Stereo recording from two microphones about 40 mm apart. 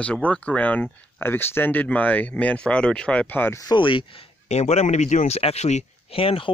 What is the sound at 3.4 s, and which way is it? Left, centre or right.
Speech, left.